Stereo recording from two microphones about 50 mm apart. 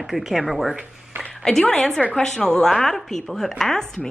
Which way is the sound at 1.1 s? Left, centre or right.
Right.